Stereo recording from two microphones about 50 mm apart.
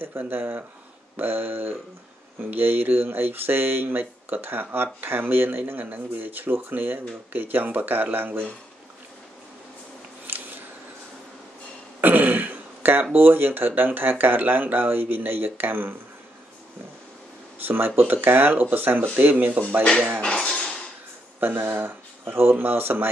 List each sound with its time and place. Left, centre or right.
0.3 s speech: right
10.2 s a sound: right
12.0 s throat clearing: right
13.1 s speech: right
17.6 s speech: right
19.1 s speech: right
20.3 s a sound: centre
21.4 s speech: right